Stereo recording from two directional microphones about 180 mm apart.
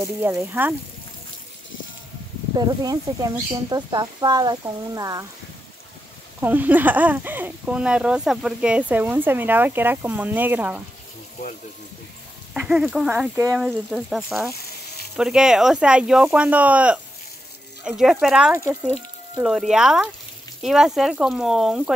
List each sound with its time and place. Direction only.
0.0 s speech: 15° right (ahead or behind)
2.5 s speech: 20° right (ahead or behind)
6.4 s speech: 10° right (ahead or behind)
12.5 s speech: 5° right (ahead or behind)
18.5 s speech: 15° right (ahead or behind)
19.4 s speech: 5° right (ahead or behind)